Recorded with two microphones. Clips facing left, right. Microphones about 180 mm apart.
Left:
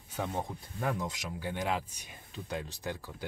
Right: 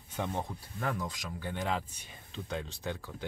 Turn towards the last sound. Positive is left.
turn(degrees=10)  # may be behind; listen again after turning